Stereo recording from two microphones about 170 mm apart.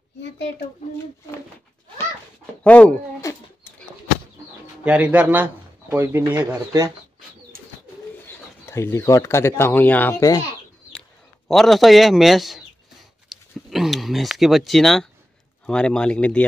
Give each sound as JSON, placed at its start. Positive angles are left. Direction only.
{"t": 2.6, "sound": "speech", "side_deg": 10}
{"t": 4.8, "sound": "speech", "side_deg": -5}
{"t": 8.3, "sound": "speech", "side_deg": 15}
{"t": 10.9, "sound": "bird", "side_deg": 5}
{"t": 13.3, "sound": "a sound", "side_deg": 0}
{"t": 15.6, "sound": "speech", "side_deg": 5}